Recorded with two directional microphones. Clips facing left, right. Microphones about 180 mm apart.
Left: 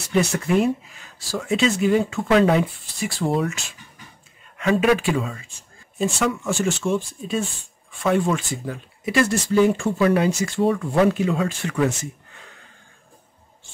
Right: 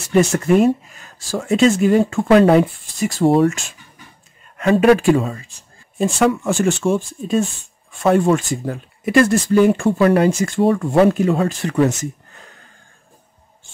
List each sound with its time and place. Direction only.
0.1 s speech: 45° right (ahead or behind)
5.9 s speech: 55° right (ahead or behind); by 12.4 s 40° right (ahead or behind)